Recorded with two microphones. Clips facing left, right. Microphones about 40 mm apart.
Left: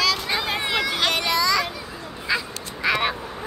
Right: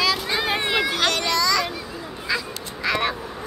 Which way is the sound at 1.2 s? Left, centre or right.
Centre.